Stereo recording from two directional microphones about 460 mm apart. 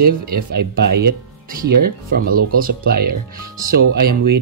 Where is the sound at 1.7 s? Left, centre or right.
Centre.